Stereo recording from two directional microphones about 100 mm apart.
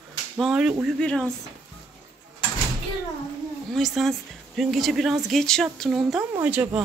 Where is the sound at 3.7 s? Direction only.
Centre (ahead or behind).